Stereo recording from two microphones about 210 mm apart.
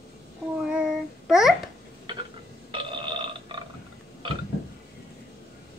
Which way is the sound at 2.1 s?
20° right (ahead or behind).